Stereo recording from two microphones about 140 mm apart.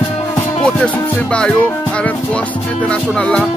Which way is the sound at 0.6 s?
10° left (ahead or behind).